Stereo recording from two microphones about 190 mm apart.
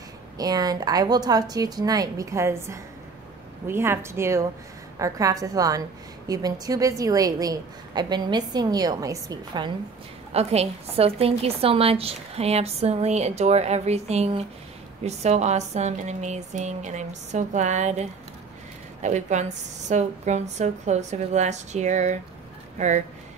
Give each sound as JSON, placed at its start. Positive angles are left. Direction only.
{"t": 0.4, "sound": "a woman's voice", "side_deg": -20}
{"t": 10.3, "sound": "a woman's voice", "side_deg": -35}